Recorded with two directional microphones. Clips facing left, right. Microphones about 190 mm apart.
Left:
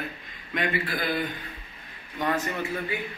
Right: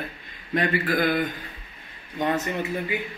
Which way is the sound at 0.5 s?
50° right (ahead or behind).